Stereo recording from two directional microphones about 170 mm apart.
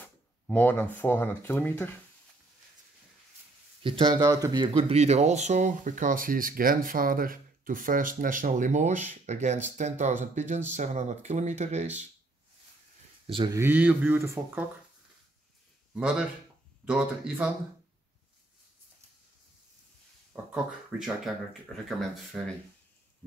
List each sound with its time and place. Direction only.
0.5 s speech: 10° left (ahead or behind)
3.8 s speech: 30° right (ahead or behind)
13.3 s speech: 25° right (ahead or behind)
13.6 s speech: 10° right (ahead or behind)
15.9 s speech: 5° right (ahead or behind)
20.9 s speech: 5° right (ahead or behind)